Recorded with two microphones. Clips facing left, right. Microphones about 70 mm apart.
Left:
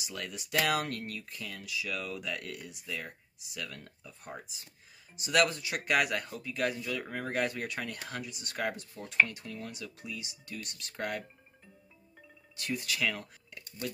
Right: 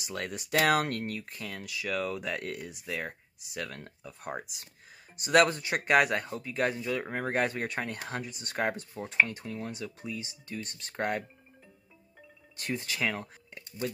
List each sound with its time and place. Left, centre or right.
0.0 s speech: right
4.2 s speech: right
5.1 s speech: right
9.0 s speech: centre
12.7 s speech: right